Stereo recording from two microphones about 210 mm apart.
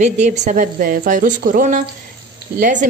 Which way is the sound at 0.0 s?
35° right (ahead or behind).